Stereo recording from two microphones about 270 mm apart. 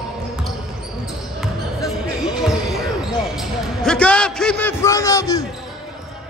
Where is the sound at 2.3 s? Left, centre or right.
Centre.